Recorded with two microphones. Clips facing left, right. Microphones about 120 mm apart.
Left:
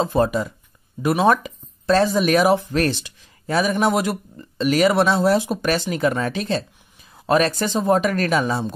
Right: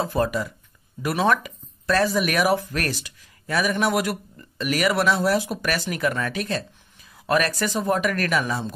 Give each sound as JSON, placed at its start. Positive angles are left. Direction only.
{"t": 0.0, "sound": "speech", "side_deg": 25}